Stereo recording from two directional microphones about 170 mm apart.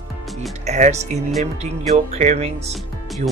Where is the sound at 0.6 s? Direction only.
40° right (ahead or behind).